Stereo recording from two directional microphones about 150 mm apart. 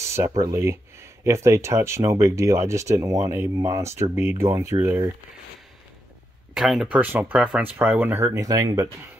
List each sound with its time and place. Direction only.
0.0 s speech: 20° right (ahead or behind)
6.5 s speech: centre (ahead or behind); by 8.8 s 25° right (ahead or behind)